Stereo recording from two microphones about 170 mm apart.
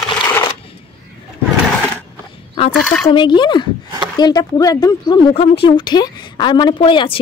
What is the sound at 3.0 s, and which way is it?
A woman's voice, 25° left (ahead or behind).